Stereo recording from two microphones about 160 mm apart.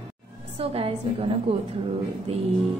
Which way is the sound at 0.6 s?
35° right (ahead or behind).